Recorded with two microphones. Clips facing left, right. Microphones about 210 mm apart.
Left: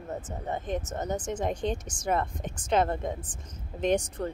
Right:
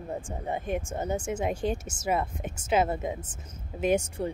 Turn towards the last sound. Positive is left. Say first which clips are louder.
# right 1 dB
turn(degrees=-5)  # may be behind; listen again after turning